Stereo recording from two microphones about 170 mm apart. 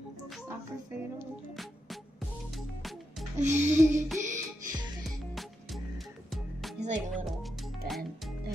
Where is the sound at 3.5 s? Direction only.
15° right (ahead or behind).